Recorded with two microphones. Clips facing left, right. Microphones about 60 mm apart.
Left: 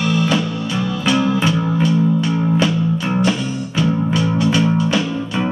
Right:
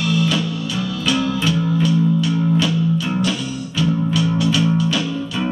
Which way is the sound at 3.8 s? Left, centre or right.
Left.